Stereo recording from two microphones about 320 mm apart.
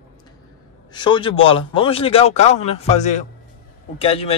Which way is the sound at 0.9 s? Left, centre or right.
Centre.